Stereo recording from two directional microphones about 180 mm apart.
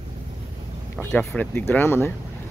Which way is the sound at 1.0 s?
10° left (ahead or behind).